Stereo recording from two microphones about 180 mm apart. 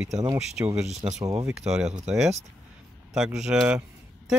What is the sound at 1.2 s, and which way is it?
Speech, 20° right (ahead or behind).